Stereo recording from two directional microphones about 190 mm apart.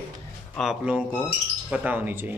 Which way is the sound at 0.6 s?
Centre (ahead or behind).